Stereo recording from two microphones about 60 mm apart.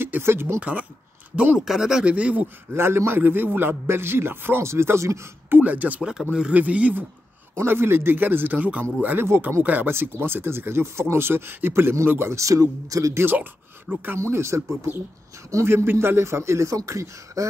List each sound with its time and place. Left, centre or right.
0.0 s speech: right
0.6 s speech: right
1.6 s speech: centre
2.0 s speech: right
2.7 s speech: right
4.6 s speech: right
5.5 s speech: right
7.5 s speech: right
9.2 s speech: right
9.6 s speech: right
12.4 s speech: right
13.2 s speech: right
14.1 s speech: right